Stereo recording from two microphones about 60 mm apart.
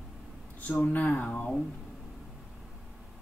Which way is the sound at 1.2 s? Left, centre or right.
Left.